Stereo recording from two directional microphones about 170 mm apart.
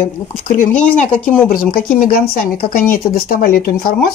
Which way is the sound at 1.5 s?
60° left (ahead or behind).